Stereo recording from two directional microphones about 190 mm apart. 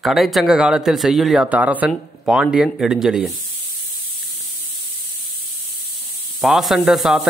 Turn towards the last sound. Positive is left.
turn(degrees=0)  # may be behind; listen again after turning